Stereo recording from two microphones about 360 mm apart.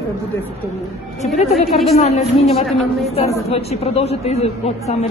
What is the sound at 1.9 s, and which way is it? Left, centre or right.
A woman's voice, centre.